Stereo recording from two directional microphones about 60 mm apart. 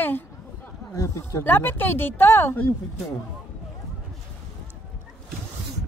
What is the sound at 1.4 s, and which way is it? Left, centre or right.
Speech, left.